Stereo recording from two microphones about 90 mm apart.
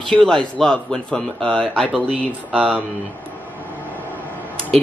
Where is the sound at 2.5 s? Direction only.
10° right (ahead or behind).